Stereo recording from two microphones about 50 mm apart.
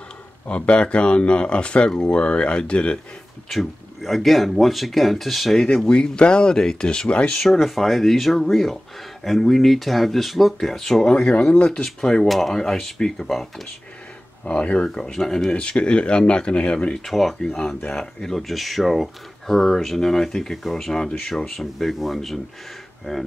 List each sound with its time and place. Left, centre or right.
0.5 s speech: left
3.4 s speech: centre
5.9 s speech: centre
7.6 s speech: centre
14.4 s speech: left
15.1 s speech: centre
15.5 s speech: left
16.9 s speech: centre